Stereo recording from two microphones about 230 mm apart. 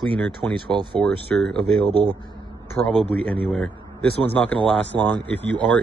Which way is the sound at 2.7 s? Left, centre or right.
Centre.